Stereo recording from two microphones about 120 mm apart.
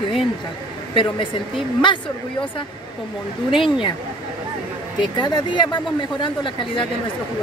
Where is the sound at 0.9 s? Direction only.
45° left (ahead or behind).